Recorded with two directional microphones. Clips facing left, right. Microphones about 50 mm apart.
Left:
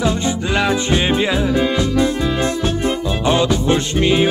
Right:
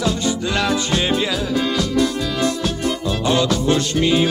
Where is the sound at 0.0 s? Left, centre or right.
Centre.